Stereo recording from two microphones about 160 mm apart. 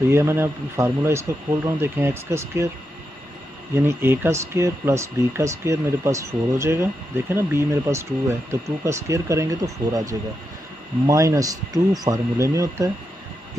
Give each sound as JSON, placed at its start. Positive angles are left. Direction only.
{"t": 0.1, "sound": "speech", "side_deg": -15}
{"t": 3.7, "sound": "speech", "side_deg": -15}